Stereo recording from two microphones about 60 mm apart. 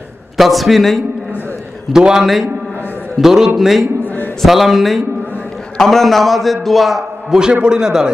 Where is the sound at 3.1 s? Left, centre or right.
Centre.